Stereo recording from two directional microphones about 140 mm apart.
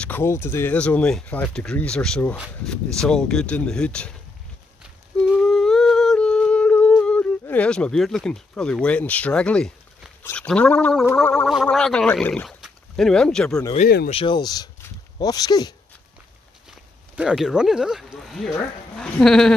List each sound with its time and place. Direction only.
0.0 s speech: 15° left (ahead or behind)
5.4 s humming: 5° left (ahead or behind)
10.3 s speech: 10° left (ahead or behind)
13.7 s speech: 60° left (ahead or behind)
14.1 s speech: 35° left (ahead or behind)
17.1 s speech: 5° right (ahead or behind)